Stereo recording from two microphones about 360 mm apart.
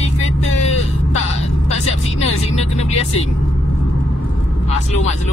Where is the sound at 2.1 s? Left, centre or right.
Centre.